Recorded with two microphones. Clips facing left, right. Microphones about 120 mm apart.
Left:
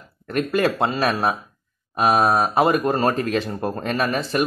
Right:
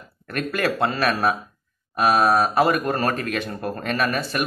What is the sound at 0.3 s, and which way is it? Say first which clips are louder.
Speech: left 4 dB; 25° left (ahead or behind).